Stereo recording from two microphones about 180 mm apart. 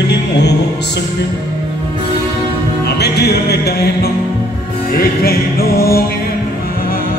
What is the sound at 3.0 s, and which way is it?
Music, 65° left (ahead or behind).